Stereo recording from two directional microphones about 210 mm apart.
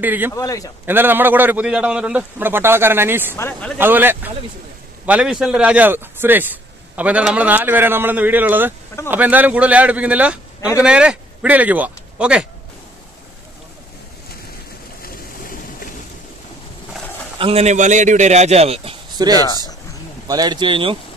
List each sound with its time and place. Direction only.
0.0 s a man's voice: 10° right (ahead or behind)
0.3 s a man's voice: 15° left (ahead or behind)
0.8 s a man's voice: 10° right (ahead or behind)
3.3 s a man's voice: 10° left (ahead or behind)
3.7 s a man's voice: 10° right (ahead or behind)
15.0 s boat: 40° left (ahead or behind)
17.4 s a man's voice: 30° right (ahead or behind)